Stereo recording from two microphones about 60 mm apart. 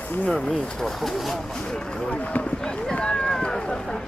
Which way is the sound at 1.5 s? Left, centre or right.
Centre.